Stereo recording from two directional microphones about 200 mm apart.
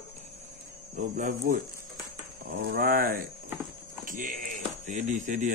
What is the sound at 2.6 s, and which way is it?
Speech, 45° right (ahead or behind).